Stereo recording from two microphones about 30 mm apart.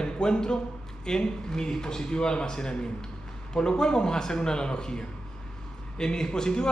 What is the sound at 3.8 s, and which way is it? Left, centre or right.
Speech, left.